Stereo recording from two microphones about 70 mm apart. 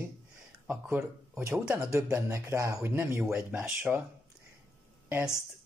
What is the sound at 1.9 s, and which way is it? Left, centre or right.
Speech, right.